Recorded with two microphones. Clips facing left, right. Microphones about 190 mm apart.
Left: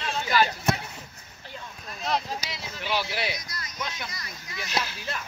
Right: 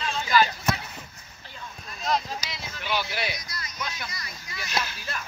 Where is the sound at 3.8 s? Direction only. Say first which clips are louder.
Left 1 dB; 20° left (ahead or behind).